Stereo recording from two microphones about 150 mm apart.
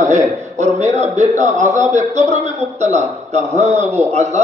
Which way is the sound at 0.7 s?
50° right (ahead or behind).